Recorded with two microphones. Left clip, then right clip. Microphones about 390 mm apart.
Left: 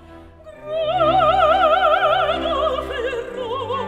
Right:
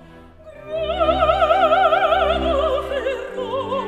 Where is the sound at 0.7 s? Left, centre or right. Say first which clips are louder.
Left 2 dB; left.